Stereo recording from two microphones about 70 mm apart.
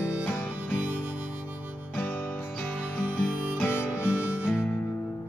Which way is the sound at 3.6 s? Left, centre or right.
Left.